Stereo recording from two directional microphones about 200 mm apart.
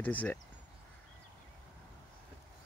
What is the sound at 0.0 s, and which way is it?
Speech, 10° left (ahead or behind).